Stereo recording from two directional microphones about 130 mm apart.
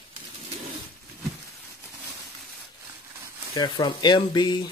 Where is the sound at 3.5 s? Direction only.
30° left (ahead or behind).